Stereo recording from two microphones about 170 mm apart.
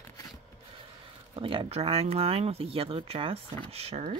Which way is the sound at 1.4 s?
30° right (ahead or behind).